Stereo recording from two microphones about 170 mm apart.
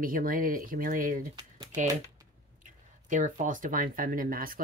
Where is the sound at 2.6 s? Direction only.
45° right (ahead or behind).